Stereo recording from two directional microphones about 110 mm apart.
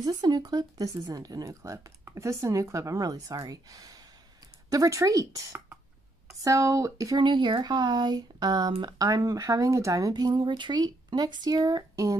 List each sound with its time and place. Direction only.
0.0 s speech: 40° right (ahead or behind)
7.2 s speech: 45° right (ahead or behind)